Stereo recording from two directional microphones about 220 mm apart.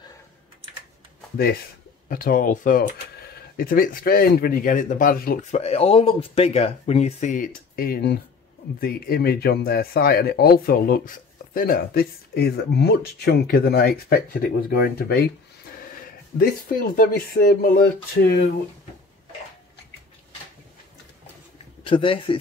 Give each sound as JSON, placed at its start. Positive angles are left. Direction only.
{"t": 2.0, "sound": "speech", "side_deg": 40}
{"t": 5.6, "sound": "speech", "side_deg": 30}
{"t": 16.3, "sound": "speech", "side_deg": 40}
{"t": 21.8, "sound": "speech", "side_deg": 25}